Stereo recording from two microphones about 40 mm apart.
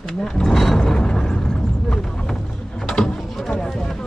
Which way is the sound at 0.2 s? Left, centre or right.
Centre.